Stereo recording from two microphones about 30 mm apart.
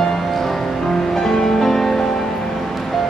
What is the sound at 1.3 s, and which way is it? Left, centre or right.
Music, centre.